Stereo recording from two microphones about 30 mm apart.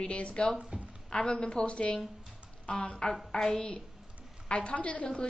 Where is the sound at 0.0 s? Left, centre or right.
Left.